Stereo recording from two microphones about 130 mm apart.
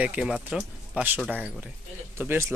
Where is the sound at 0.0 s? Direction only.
10° right (ahead or behind).